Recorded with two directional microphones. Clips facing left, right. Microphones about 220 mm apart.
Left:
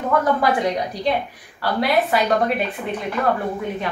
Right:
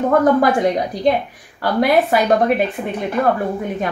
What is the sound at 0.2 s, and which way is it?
Speech, 50° right (ahead or behind).